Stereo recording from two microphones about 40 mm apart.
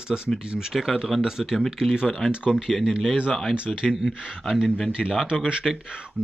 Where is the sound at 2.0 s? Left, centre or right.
Centre.